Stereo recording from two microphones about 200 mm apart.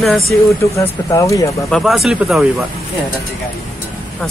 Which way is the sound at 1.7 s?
Centre (ahead or behind).